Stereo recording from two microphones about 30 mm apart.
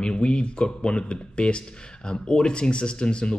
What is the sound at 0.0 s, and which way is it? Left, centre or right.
Speech, left.